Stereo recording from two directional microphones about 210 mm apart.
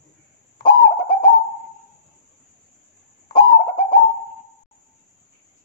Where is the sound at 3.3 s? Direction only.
20° left (ahead or behind).